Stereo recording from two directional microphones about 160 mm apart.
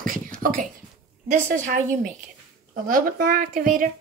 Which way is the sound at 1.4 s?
50° right (ahead or behind).